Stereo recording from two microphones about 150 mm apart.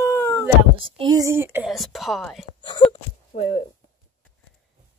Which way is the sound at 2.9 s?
40° left (ahead or behind).